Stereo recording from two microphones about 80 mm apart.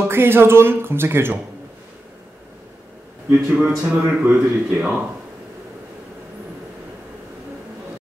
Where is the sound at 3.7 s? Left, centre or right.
Centre.